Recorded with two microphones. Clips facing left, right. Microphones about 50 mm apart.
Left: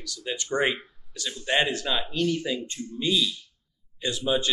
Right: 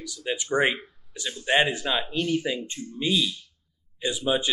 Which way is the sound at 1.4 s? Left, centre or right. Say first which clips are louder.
Right 2 dB; centre.